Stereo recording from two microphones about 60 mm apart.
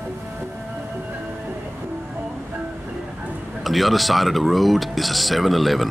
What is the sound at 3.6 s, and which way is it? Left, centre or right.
Speech, centre.